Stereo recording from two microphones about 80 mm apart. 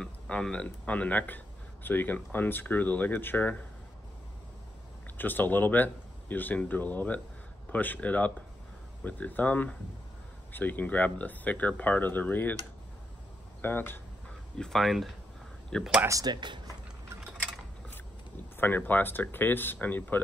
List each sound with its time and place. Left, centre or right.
0.0 s speech: centre
5.1 s speech: left
13.6 s speech: left
14.6 s speech: centre
16.3 s speech: right
18.6 s speech: left